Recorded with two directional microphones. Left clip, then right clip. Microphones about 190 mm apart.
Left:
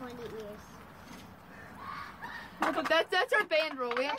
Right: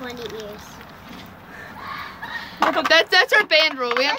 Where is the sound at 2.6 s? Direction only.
25° right (ahead or behind).